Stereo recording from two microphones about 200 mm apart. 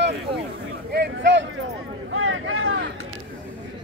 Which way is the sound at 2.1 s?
85° right.